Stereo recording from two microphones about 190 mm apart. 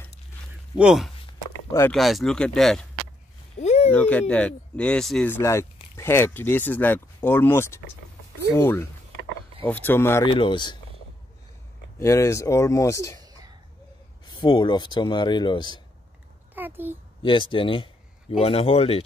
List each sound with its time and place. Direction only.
0.7 s speech: 5° right (ahead or behind)
1.7 s speech: 15° left (ahead or behind)
2.0 s speech: centre (ahead or behind)
3.5 s a sound: 35° left (ahead or behind)
3.9 s speech: 10° left (ahead or behind)
10.2 s speech: 25° left (ahead or behind)
12.0 s speech: 15° left (ahead or behind)
13.2 s a sound: 20° right (ahead or behind)
14.2 s speech: 20° left (ahead or behind)
16.5 s a child's voice: 10° right (ahead or behind)
17.2 s speech: 25° left (ahead or behind)